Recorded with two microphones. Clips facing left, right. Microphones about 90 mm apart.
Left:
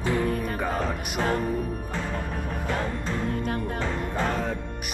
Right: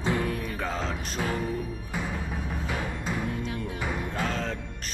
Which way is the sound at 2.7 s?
10° right (ahead or behind).